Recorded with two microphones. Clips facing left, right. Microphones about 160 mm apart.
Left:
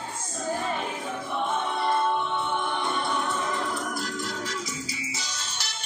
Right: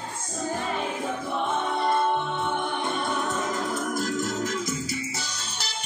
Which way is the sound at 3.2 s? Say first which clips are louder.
Right 1 dB; 45° right (ahead or behind).